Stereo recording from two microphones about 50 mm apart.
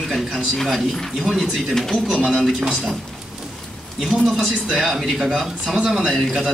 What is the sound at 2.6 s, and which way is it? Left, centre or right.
Speech, centre.